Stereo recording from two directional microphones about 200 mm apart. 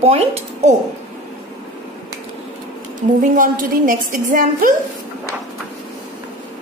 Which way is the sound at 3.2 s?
40° right (ahead or behind).